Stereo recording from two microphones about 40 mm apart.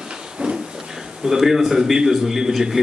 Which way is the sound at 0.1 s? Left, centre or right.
Centre.